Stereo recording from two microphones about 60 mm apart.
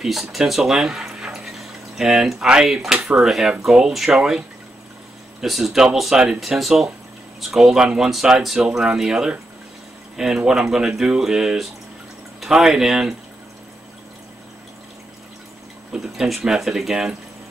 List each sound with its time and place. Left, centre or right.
0.0 s speech: centre
5.4 s speech: centre
15.9 s speech: centre